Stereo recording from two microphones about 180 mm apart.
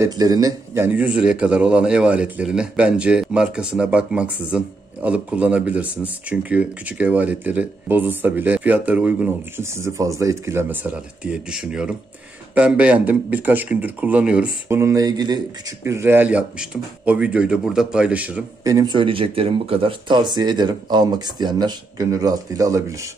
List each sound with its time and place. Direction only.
0.0 s a man's voice: 20° right (ahead or behind)
18.6 s speech: 20° right (ahead or behind)